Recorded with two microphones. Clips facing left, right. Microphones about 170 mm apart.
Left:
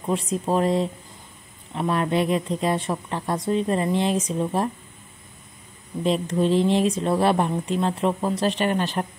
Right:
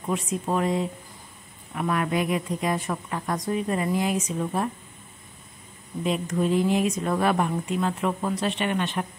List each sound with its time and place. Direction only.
0.1 s a woman's voice: 35° left (ahead or behind)
6.0 s speech: 30° left (ahead or behind)